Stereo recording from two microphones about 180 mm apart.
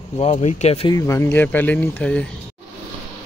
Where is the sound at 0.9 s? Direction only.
15° left (ahead or behind).